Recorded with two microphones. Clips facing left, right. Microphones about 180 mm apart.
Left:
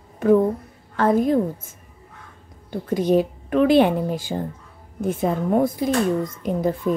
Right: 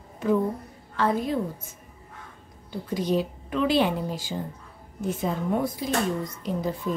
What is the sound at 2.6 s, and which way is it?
A woman's voice, 55° left (ahead or behind).